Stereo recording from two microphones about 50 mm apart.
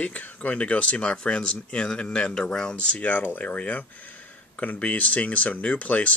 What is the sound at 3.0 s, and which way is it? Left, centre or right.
Speech, left.